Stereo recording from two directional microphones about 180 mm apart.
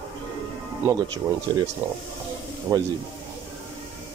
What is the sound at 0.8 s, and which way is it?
Speech, 20° right (ahead or behind).